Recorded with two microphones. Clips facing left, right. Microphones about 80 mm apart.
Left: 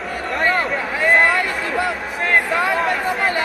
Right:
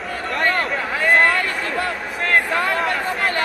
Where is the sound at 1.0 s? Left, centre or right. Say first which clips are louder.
Left 1 dB; centre.